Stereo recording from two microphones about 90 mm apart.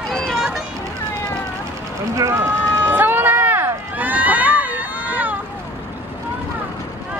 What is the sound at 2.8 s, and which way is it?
Run, 20° right (ahead or behind).